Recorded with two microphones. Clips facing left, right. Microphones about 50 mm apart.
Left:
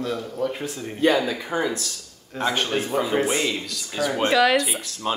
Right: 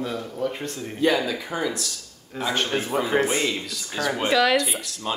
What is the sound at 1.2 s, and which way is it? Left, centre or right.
Speech, left.